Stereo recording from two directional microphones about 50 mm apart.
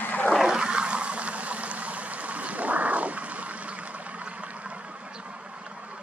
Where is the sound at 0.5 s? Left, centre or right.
Centre.